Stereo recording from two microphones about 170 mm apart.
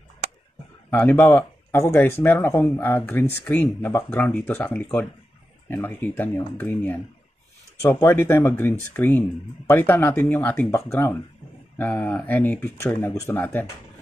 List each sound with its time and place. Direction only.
0.8 s speech: 10° left (ahead or behind)